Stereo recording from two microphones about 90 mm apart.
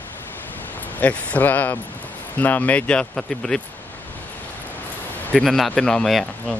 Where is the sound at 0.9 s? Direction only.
15° left (ahead or behind).